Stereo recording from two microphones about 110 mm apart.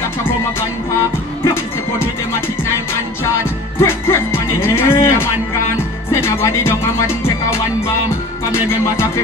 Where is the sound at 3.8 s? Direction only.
20° left (ahead or behind).